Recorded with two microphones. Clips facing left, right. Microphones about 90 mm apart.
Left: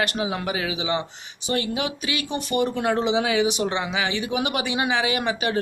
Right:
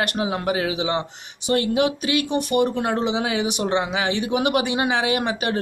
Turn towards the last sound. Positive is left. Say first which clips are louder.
# right 1 dB
turn(degrees=-50)  # may be behind; listen again after turning